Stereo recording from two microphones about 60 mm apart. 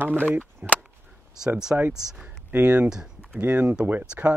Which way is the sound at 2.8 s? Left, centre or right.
Centre.